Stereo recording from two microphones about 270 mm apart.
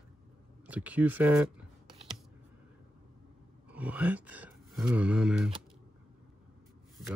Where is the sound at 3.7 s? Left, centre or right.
Centre.